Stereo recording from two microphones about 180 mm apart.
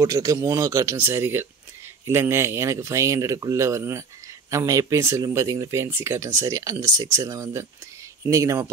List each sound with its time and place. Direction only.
0.0 s speech: 20° right (ahead or behind)